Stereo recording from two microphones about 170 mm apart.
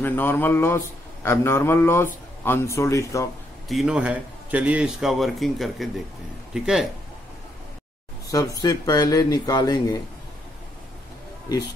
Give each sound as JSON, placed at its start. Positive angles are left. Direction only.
{"t": 0.0, "sound": "a man's voice", "side_deg": 10}
{"t": 3.6, "sound": "a man's voice", "side_deg": 0}
{"t": 8.5, "sound": "speech", "side_deg": 25}